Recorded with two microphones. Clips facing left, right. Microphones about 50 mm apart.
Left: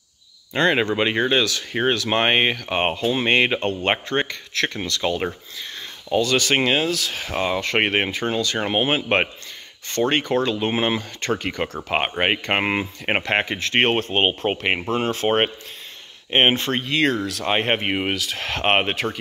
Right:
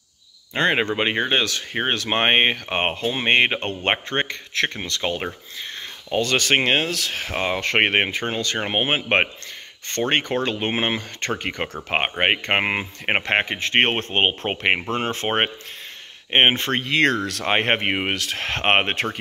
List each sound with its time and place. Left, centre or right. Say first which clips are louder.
0.6 s speech: left 1 dB; right
8.5 s speech: even; right
10.3 s speech: left 2 dB; right
14.5 s speech: even; right
16.8 s speech: right 3 dB; right
17.5 s speech: right 1 dB; right